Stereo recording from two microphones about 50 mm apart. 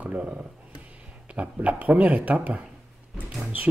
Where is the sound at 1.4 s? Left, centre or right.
Right.